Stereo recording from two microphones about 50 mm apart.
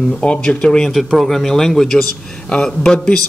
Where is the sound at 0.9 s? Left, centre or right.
Centre.